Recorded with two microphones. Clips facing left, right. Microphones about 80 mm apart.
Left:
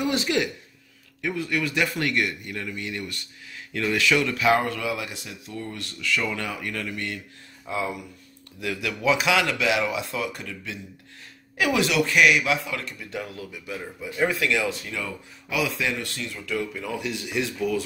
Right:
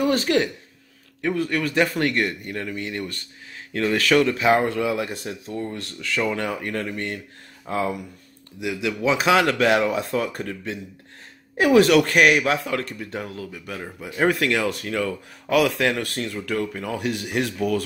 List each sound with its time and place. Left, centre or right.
0.0 s a man's voice: right
4.4 s a man's voice: right
8.5 s a man's voice: right